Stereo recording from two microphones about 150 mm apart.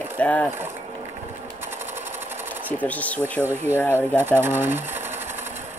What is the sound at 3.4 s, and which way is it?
Speech, 15° right (ahead or behind).